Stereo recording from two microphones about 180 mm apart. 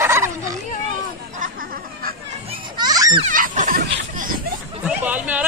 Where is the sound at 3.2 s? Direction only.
45° right (ahead or behind).